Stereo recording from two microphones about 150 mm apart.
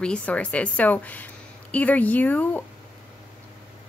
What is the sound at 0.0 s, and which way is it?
A woman's voice, 10° left (ahead or behind).